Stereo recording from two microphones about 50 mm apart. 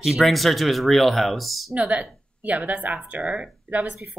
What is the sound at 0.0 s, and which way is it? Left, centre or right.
Speech, centre.